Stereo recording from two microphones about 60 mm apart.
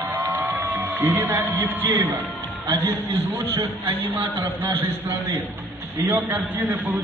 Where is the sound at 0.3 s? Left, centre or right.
Right.